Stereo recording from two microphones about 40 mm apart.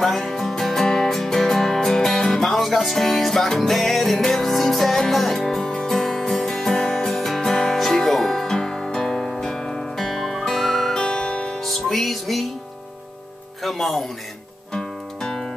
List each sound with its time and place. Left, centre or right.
0.0 s music: centre
9.9 s music: centre
11.0 s music: centre
11.6 s music: centre
13.6 s music: centre
14.7 s guitar: centre